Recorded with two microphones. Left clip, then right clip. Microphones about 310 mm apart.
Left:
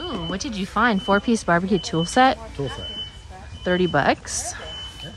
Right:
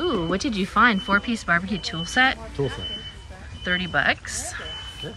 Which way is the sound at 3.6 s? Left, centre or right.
Centre.